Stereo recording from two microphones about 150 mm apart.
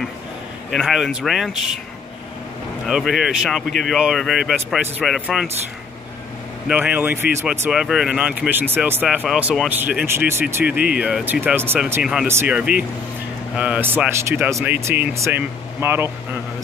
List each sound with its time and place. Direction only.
0.7 s speech: centre (ahead or behind)
2.9 s speech: centre (ahead or behind)
6.7 s speech: 10° right (ahead or behind)